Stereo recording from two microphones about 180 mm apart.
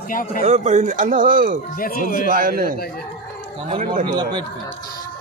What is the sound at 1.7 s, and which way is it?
Speech, 50° left (ahead or behind).